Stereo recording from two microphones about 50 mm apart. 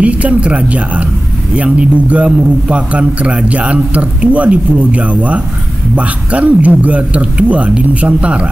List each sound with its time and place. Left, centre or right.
0.0 s a man's voice: right